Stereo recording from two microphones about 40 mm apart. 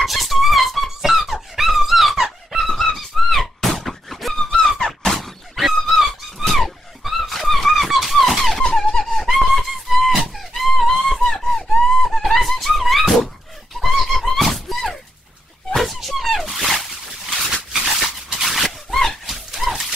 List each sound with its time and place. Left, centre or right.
0.0 s music: centre
1.3 s squeak: centre
5.1 s a sound: centre
8.6 s squeak: left
9.0 s a sound: centre
17.8 s dog: centre